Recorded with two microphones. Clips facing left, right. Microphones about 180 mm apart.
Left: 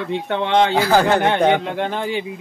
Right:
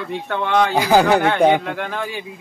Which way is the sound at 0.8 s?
15° right (ahead or behind).